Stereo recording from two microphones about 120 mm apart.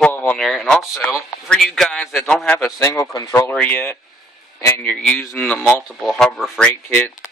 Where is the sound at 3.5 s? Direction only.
15° left (ahead or behind).